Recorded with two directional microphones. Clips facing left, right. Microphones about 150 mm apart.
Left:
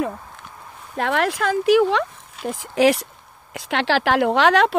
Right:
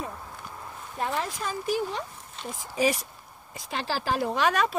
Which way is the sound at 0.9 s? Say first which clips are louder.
Left 9 dB; 80° left.